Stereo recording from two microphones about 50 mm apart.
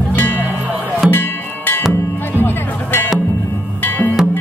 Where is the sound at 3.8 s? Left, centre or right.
Left.